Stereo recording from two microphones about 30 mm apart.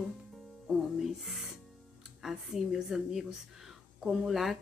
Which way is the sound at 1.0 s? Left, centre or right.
Centre.